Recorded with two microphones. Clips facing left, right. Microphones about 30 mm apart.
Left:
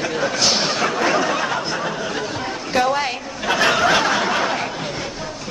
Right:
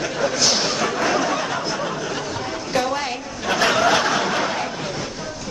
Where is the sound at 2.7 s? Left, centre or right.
Centre.